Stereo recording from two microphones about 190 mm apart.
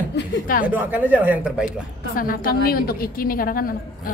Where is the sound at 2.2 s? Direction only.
50° left (ahead or behind).